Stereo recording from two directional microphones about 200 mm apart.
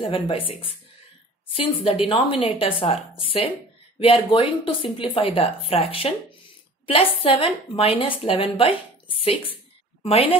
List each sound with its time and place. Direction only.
0.0 s a woman's voice: 25° left (ahead or behind)